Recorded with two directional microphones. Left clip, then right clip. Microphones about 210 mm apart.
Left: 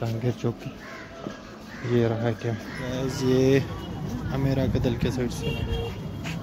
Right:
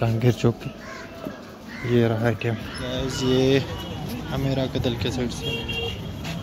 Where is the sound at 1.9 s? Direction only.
5° right (ahead or behind).